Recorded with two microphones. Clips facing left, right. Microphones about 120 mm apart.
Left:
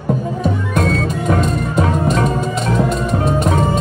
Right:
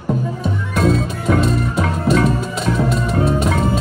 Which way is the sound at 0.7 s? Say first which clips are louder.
Right 4 dB; centre (ahead or behind).